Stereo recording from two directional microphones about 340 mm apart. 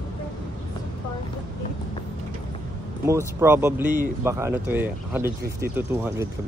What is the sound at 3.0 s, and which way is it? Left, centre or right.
Speech, centre.